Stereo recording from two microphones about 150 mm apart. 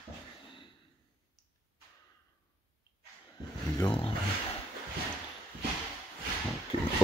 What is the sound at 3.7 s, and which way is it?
Speech, 30° left (ahead or behind).